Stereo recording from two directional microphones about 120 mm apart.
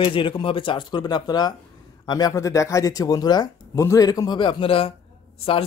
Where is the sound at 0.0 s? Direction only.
45° left (ahead or behind).